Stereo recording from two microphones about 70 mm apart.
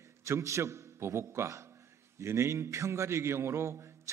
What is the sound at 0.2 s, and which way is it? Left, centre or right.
A man's voice, right.